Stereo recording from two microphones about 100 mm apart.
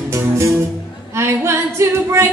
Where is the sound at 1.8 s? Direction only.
25° right (ahead or behind).